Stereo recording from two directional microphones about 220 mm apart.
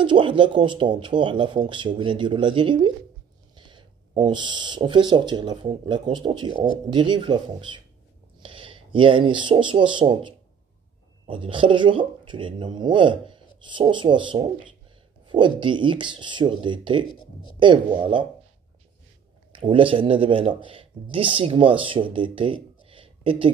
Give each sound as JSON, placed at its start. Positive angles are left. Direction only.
{"t": 0.0, "sound": "speech", "side_deg": -20}
{"t": 19.5, "sound": "speech", "side_deg": -25}